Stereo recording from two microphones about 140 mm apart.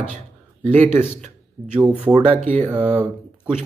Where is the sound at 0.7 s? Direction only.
60° right (ahead or behind).